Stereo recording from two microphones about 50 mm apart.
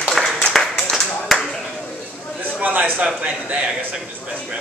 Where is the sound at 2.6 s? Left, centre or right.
Right.